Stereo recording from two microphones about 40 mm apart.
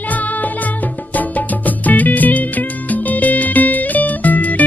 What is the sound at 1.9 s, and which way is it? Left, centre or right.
Music, left.